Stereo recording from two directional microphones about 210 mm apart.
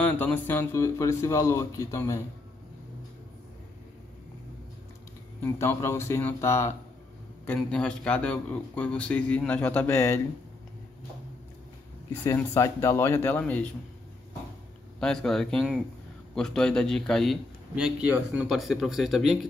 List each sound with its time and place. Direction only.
0.0 s speech: 10° left (ahead or behind)
5.4 s a man's voice: 10° left (ahead or behind)
12.3 s speech: 15° left (ahead or behind)
15.0 s a man's voice: 5° left (ahead or behind)